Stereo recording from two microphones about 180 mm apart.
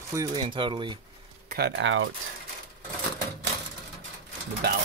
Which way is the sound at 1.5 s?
70° right (ahead or behind).